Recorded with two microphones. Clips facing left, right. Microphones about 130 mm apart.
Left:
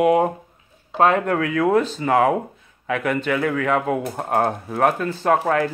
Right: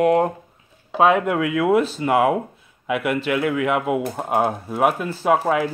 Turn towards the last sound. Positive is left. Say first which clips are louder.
# even
turn(degrees=-5)  # may be behind; listen again after turning